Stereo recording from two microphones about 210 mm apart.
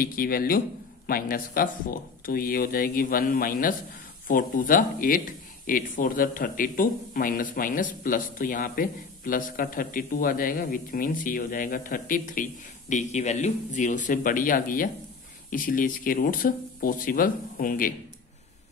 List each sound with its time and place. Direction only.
0.0 s speech: 45° left (ahead or behind)